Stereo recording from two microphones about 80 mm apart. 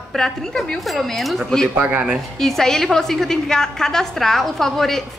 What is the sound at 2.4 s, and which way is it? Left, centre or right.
A woman's voice, centre.